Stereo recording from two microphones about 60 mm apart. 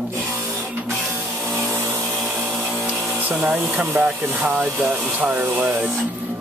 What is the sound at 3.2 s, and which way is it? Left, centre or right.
Speech, right.